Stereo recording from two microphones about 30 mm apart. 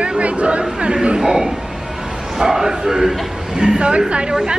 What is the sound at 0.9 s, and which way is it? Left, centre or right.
Speech, right.